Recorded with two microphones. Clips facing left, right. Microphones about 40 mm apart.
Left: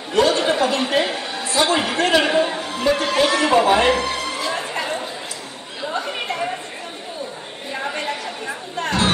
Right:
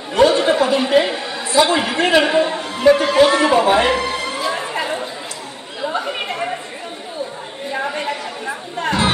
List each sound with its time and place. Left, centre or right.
0.1 s chatter: centre
0.4 s a sound: centre
1.7 s a man's voice: centre
2.0 s a man's voice: centre
2.2 s a man's voice: centre
5.9 s chatter: centre
7.7 s chatter: centre